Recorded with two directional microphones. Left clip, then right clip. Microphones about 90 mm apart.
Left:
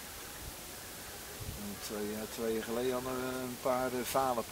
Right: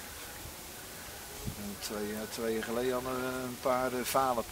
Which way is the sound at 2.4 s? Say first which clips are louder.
Right 2 dB; 25° right (ahead or behind).